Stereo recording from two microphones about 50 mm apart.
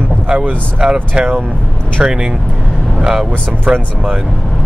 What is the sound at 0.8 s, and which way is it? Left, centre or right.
Speech, centre.